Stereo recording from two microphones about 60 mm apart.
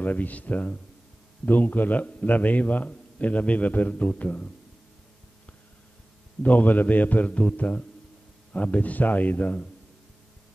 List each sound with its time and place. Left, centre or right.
0.0 s a man's voice: left
6.4 s a man's voice: left